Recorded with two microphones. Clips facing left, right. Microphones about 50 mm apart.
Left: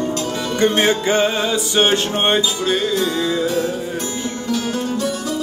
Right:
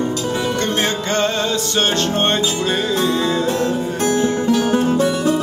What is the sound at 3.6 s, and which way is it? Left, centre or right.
Music, right.